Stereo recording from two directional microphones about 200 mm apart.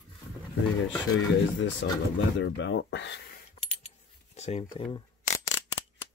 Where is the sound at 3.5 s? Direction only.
35° left (ahead or behind).